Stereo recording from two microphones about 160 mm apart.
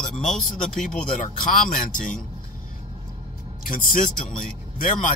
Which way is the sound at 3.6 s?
60° left (ahead or behind).